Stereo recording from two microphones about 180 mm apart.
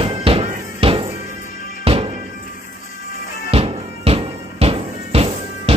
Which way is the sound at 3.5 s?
35° right (ahead or behind).